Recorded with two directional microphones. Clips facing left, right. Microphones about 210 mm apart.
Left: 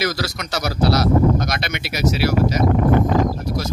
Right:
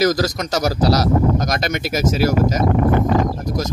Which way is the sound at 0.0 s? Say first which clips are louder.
Right 6 dB; 40° right (ahead or behind).